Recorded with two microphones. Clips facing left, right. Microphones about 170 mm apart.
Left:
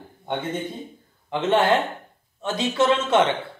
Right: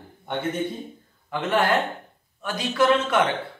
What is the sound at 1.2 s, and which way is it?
Speech, 25° left (ahead or behind).